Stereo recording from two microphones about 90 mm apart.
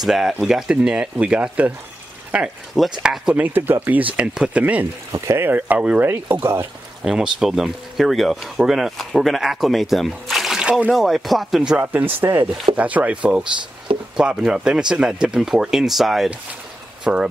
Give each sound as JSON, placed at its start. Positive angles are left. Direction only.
{"t": 0.0, "sound": "speech", "side_deg": -5}
{"t": 3.3, "sound": "speech", "side_deg": -20}
{"t": 5.1, "sound": "speech", "side_deg": -30}
{"t": 6.4, "sound": "speech", "side_deg": -30}
{"t": 7.0, "sound": "speech", "side_deg": -5}
{"t": 11.7, "sound": "speech", "side_deg": -20}
{"t": 12.7, "sound": "speech", "side_deg": -15}